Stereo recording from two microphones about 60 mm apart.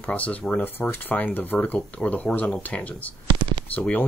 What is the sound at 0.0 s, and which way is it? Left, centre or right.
Speech, left.